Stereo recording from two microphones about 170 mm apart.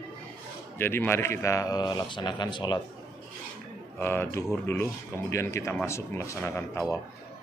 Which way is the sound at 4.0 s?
15° left (ahead or behind).